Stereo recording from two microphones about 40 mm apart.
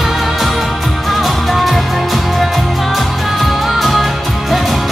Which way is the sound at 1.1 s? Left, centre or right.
Centre.